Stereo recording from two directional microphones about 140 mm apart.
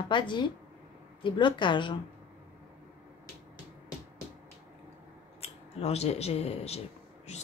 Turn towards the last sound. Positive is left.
turn(degrees=50)  # may be behind; listen again after turning